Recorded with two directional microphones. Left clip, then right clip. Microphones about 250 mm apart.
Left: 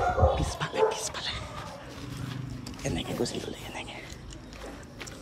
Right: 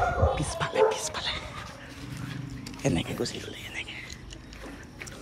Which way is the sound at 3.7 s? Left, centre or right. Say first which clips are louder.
Right 2 dB; left.